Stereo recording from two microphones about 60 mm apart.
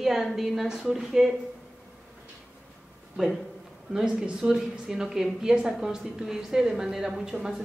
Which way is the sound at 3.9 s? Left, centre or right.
Centre.